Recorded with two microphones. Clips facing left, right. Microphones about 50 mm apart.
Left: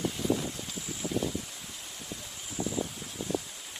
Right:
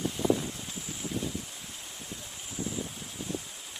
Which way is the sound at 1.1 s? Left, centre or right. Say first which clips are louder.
Left 4 dB; left.